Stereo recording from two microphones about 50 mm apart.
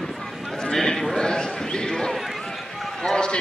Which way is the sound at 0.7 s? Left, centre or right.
Centre.